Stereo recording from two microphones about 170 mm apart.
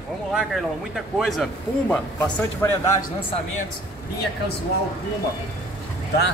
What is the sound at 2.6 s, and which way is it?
Speech, 15° left (ahead or behind).